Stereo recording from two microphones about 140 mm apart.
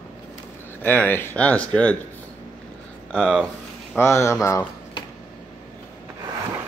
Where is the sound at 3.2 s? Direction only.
5° right (ahead or behind).